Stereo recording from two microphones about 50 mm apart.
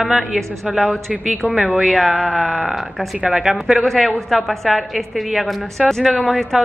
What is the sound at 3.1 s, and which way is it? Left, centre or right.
Speech, right.